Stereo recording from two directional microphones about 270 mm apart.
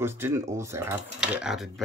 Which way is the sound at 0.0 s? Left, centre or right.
Centre.